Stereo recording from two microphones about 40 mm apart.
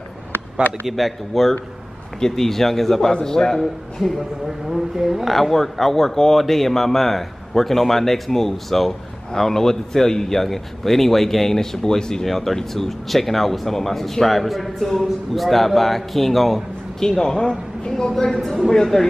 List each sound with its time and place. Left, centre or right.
0.8 s speech: centre
3.1 s speech: centre
4.0 s speech: centre